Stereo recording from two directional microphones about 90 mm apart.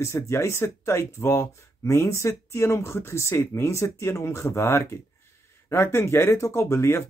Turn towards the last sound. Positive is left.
turn(degrees=30)  # may be behind; listen again after turning